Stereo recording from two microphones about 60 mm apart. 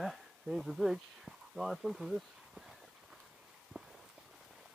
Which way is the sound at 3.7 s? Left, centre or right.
Centre.